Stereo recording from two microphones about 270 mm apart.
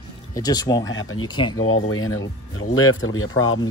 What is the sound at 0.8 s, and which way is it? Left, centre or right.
Speech, left.